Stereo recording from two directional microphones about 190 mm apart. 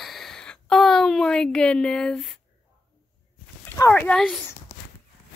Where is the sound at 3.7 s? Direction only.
10° left (ahead or behind).